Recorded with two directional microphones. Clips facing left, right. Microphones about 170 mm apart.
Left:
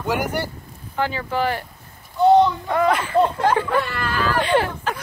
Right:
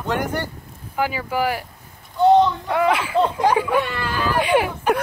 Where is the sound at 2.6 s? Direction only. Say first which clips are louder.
Even; 5° right (ahead or behind).